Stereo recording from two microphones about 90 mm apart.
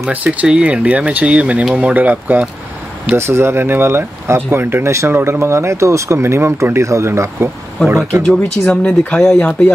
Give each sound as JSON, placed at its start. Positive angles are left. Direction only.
{"t": 0.1, "sound": "speech", "side_deg": -15}
{"t": 3.2, "sound": "speech", "side_deg": -30}
{"t": 8.6, "sound": "speech", "side_deg": 15}